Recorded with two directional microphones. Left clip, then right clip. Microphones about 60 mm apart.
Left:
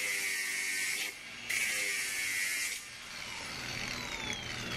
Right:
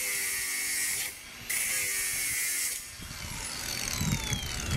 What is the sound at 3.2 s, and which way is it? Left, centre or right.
Vehicle, right.